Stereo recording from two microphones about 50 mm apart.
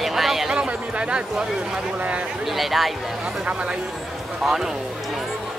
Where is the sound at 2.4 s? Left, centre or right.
Centre.